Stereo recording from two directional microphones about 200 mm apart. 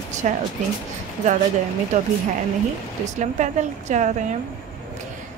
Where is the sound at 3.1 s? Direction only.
35° right (ahead or behind).